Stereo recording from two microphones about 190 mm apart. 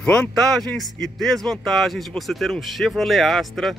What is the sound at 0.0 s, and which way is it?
Speech, 5° left (ahead or behind).